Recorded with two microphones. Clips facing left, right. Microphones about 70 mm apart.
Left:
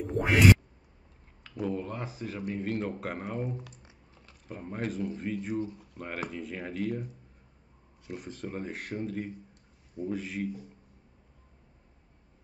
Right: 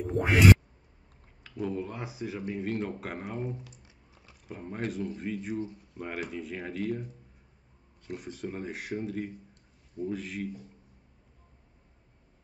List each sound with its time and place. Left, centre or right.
0.0 s a sound: centre
1.4 s speech: centre
3.5 s speech: left
4.1 s speech: centre
8.1 s speech: centre